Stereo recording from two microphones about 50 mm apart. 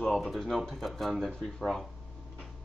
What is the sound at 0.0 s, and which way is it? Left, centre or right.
Speech, centre.